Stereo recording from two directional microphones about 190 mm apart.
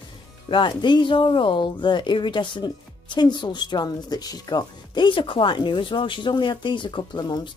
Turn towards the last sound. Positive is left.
turn(degrees=20)  # may be behind; listen again after turning